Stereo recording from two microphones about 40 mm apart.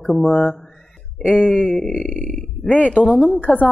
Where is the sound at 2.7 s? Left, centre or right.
Left.